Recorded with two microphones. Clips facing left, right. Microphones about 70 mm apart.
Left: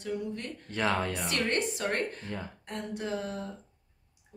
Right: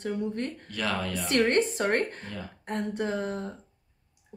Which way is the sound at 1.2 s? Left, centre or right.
Right.